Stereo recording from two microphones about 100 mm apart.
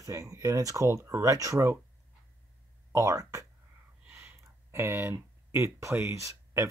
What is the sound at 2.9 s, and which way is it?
Speech, 30° right (ahead or behind).